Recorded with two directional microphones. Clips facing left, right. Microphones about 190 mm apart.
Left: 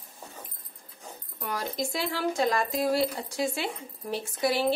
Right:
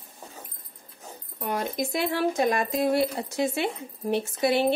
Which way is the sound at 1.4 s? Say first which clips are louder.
Right 4 dB; 20° right (ahead or behind).